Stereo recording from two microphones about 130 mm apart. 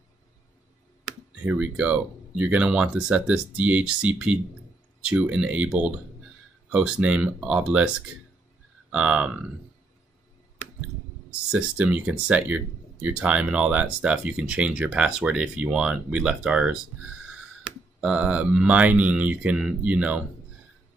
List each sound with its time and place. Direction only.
1.4 s speech: 10° right (ahead or behind)
8.9 s speech: 10° right (ahead or behind)
11.5 s speech: 10° right (ahead or behind)
18.0 s speech: 10° right (ahead or behind)